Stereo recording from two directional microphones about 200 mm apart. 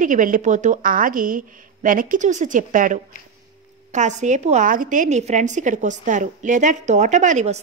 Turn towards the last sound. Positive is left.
turn(degrees=-35)  # may be behind; listen again after turning